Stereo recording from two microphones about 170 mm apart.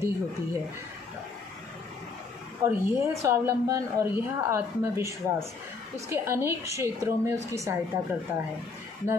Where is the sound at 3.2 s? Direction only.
20° right (ahead or behind).